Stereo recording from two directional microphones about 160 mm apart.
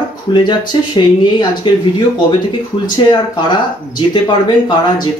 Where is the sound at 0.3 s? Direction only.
25° left (ahead or behind).